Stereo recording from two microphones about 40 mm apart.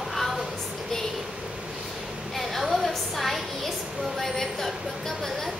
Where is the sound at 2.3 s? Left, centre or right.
Centre.